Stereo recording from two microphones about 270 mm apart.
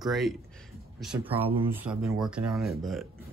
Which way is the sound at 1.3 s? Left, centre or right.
Right.